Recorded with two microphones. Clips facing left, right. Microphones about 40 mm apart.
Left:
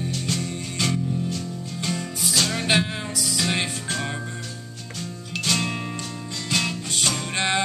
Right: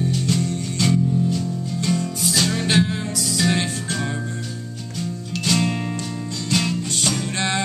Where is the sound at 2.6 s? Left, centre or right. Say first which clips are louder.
Right 3 dB; centre.